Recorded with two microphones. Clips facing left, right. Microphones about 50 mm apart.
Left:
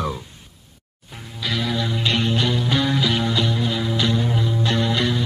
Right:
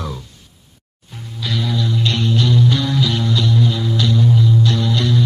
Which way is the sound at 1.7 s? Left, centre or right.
Left.